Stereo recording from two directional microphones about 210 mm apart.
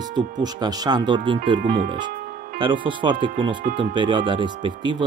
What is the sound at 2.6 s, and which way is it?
Speech, 25° right (ahead or behind).